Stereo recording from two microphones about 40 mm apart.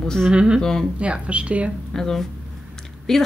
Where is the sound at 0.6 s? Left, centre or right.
Centre.